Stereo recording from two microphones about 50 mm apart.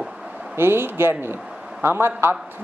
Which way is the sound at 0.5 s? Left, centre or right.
Right.